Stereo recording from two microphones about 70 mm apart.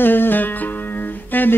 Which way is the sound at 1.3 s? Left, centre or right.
Left.